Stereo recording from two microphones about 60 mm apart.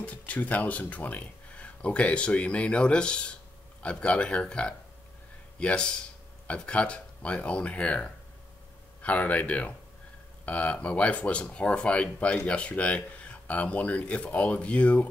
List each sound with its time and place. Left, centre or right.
0.0 s speech: left